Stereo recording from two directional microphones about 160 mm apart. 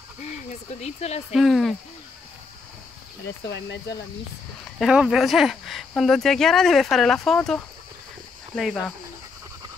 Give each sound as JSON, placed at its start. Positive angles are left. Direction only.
{"t": 0.2, "sound": "speech", "side_deg": 45}
{"t": 1.3, "sound": "speech", "side_deg": 0}
{"t": 3.4, "sound": "speech", "side_deg": 90}
{"t": 4.7, "sound": "speech", "side_deg": -5}